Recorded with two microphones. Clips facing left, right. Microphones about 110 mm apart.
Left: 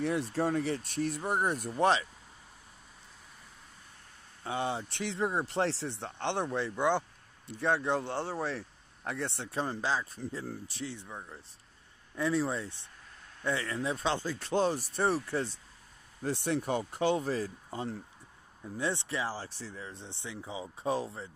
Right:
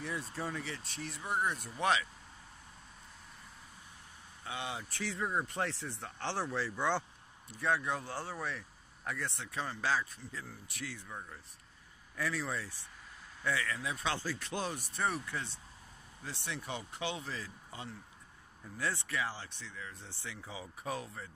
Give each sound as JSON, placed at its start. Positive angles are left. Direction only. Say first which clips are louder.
{"t": 0.0, "sound": "speech", "louder": "left 9 dB", "side_deg": 65}
{"t": 4.5, "sound": "speech", "louder": "left 7 dB", "side_deg": 35}
{"t": 7.4, "sound": "speech", "louder": "left 4 dB", "side_deg": 30}
{"t": 10.1, "sound": "speech", "louder": "left 8 dB", "side_deg": 40}
{"t": 10.7, "sound": "speech", "louder": "left 4 dB", "side_deg": 25}
{"t": 12.2, "sound": "speech", "louder": "left 7 dB", "side_deg": 25}
{"t": 16.2, "sound": "speech", "louder": "left 11 dB", "side_deg": 50}
{"t": 18.8, "sound": "speech", "louder": "left 3 dB", "side_deg": 25}